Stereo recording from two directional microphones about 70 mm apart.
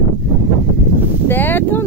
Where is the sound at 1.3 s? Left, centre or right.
Left.